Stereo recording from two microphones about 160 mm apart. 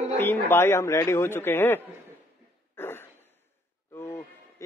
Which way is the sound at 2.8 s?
15° left (ahead or behind).